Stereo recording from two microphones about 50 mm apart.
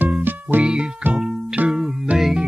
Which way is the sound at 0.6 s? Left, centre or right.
Centre.